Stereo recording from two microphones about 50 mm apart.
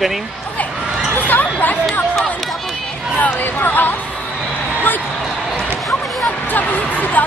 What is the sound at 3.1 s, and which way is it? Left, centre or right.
Speech, left.